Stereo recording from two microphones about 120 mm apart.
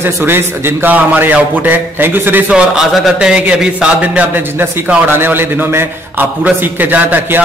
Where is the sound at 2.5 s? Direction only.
5° right (ahead or behind).